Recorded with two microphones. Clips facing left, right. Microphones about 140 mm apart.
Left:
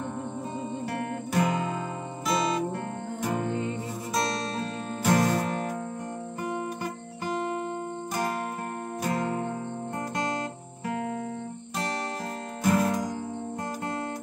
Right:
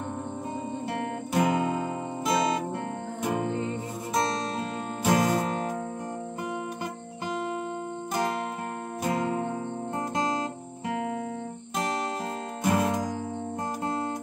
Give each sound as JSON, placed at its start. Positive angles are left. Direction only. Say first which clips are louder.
{"t": 1.3, "sound": "music", "louder": "right 3 dB", "side_deg": -15}
{"t": 5.0, "sound": "music", "louder": "even", "side_deg": -15}
{"t": 12.6, "sound": "music", "louder": "left 1 dB", "side_deg": -20}